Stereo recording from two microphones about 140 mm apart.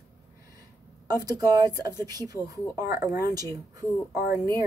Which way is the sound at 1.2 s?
25° right (ahead or behind).